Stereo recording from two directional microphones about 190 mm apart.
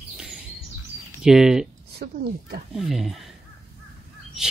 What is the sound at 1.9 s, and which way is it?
Speech, 55° right (ahead or behind).